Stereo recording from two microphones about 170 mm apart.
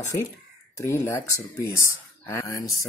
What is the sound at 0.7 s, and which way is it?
Speech, 15° left (ahead or behind).